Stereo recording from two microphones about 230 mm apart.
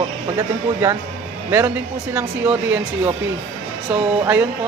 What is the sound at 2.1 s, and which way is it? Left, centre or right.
Speech, centre.